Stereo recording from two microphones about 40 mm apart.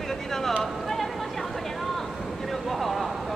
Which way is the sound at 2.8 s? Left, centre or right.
Centre.